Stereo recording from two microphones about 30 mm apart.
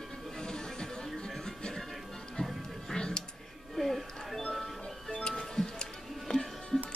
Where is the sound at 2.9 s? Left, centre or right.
Left.